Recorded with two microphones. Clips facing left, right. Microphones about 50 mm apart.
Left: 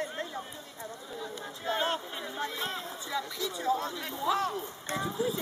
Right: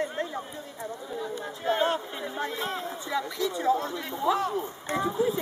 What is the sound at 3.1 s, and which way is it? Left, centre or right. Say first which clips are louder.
Speech: right 5 dB; right.